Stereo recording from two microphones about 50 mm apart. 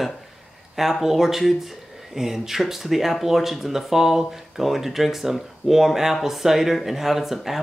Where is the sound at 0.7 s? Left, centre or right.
Centre.